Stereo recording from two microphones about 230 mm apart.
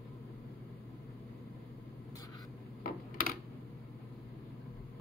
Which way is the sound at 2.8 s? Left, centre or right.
Left.